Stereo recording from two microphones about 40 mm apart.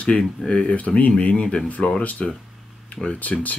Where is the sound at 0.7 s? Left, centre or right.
Left.